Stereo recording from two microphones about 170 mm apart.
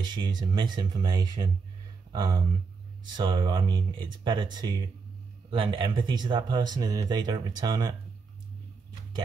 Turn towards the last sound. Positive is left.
turn(degrees=-20)  # may be behind; listen again after turning